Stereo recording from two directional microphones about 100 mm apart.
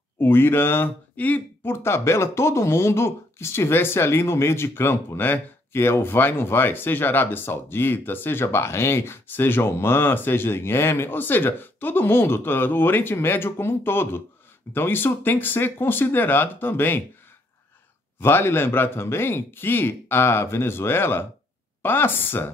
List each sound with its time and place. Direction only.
0.2 s speech: 20° left (ahead or behind)
18.2 s speech: 25° left (ahead or behind)